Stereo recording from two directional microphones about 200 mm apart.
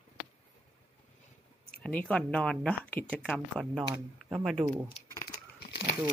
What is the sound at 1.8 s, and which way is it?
Speech, 5° left (ahead or behind).